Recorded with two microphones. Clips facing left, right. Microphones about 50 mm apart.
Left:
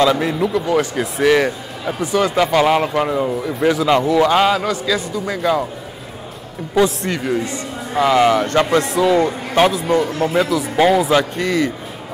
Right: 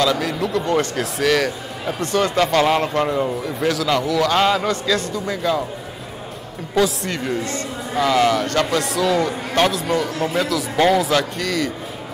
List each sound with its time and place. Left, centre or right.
0.0 s speech: left
0.5 s speech: centre
3.6 s speech: left
4.3 s speech: centre
6.8 s speech: centre
11.1 s speech: left